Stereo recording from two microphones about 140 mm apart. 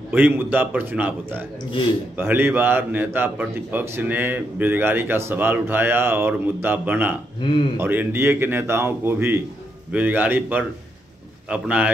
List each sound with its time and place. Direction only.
0.1 s a man's voice: 15° right (ahead or behind)
7.4 s speech: 35° left (ahead or behind)
7.7 s a man's voice: 15° right (ahead or behind)